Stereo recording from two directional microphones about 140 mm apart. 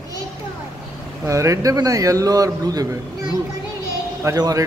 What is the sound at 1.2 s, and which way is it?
A man's voice, 20° right (ahead or behind).